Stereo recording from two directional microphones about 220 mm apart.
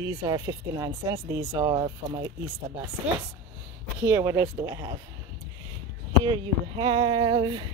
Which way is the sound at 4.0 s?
10° right (ahead or behind).